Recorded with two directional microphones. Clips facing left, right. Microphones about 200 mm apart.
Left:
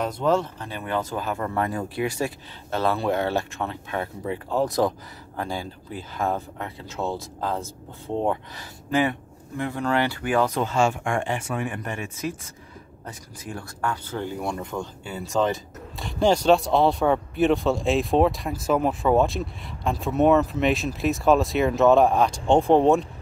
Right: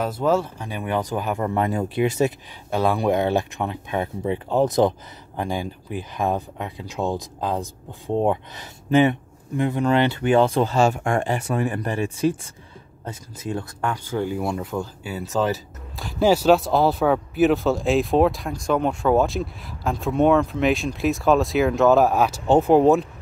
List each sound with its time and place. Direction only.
0.0 s speech: 5° right (ahead or behind)